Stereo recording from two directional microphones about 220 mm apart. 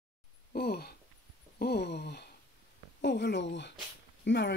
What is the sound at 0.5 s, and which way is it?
Speech, 45° left (ahead or behind).